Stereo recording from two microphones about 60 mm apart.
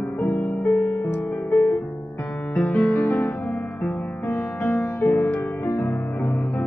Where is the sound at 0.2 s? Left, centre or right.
Left.